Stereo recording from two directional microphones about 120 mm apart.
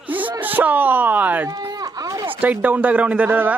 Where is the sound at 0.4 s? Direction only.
15° right (ahead or behind).